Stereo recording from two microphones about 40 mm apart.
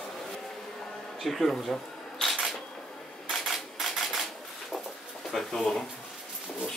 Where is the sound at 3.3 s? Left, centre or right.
Centre.